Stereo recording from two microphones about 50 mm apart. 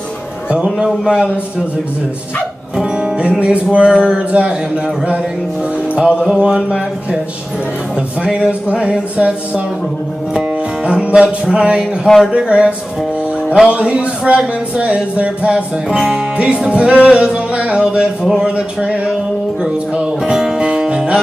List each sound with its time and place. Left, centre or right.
0.7 s speech: centre
1.2 s music: right
2.8 s music: centre
6.2 s music: centre
8.2 s music: right
10.9 s music: right